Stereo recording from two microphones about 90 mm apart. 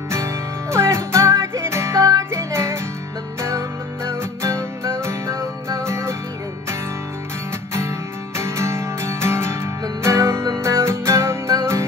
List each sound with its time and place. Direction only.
0.1 s music: 30° right (ahead or behind)
8.4 s music: 30° right (ahead or behind)